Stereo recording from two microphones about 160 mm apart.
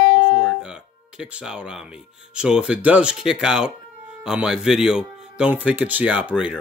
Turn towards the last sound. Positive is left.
turn(degrees=-10)  # may be behind; listen again after turning